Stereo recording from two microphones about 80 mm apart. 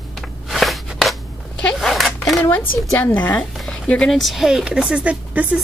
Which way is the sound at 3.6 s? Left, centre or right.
Centre.